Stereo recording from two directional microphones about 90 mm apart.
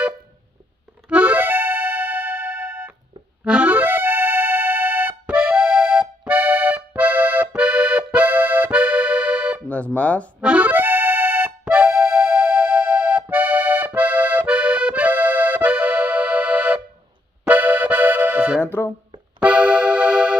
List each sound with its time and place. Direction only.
1.0 s music: 15° right (ahead or behind)
9.7 s music: 15° left (ahead or behind)
10.4 s accordion: 15° right (ahead or behind)
18.6 s music: 25° left (ahead or behind)
19.4 s music: 15° right (ahead or behind)